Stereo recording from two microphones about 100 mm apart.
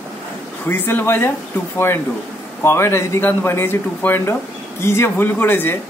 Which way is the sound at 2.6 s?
25° left (ahead or behind).